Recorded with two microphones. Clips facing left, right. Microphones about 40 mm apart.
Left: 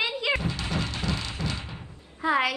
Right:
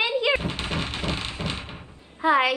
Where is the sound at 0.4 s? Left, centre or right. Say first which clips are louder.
Right 1 dB; right.